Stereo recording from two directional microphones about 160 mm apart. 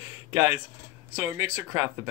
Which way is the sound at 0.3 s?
25° right (ahead or behind).